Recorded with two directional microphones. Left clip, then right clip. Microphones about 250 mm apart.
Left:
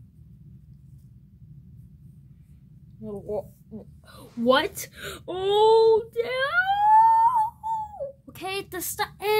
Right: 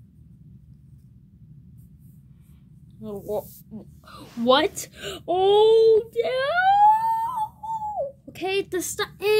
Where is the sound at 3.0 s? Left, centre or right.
Right.